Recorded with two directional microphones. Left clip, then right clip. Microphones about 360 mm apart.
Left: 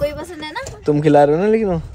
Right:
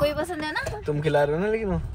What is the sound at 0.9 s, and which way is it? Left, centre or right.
Speech, left.